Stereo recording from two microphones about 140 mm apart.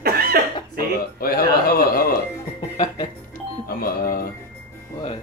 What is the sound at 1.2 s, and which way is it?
Speech, 90° left.